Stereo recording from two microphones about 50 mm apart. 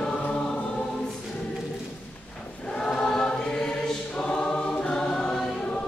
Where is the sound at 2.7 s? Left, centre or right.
Centre.